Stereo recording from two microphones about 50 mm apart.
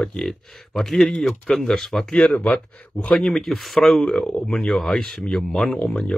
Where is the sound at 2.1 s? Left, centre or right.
Left.